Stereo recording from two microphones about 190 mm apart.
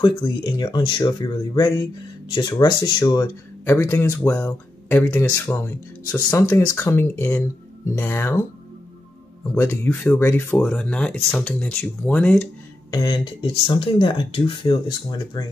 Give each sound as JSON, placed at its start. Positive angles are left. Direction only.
{"t": 0.0, "sound": "speech", "side_deg": 25}
{"t": 9.6, "sound": "speech", "side_deg": 10}
{"t": 12.9, "sound": "speech", "side_deg": 25}